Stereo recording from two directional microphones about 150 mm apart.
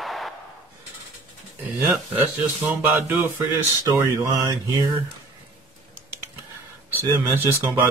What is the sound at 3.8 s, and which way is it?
Speech, 20° right (ahead or behind).